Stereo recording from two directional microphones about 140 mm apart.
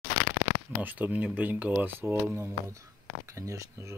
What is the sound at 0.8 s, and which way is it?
Speech, 10° right (ahead or behind).